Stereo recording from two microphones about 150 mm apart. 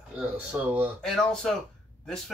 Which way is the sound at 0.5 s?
10° right (ahead or behind).